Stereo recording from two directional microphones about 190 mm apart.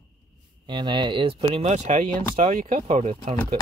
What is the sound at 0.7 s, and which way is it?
Speech, 25° right (ahead or behind).